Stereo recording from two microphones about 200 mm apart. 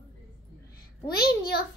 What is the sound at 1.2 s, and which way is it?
Speech, 50° left (ahead or behind).